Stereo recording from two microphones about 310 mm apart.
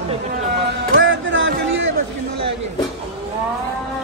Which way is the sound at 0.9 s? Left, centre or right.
Right.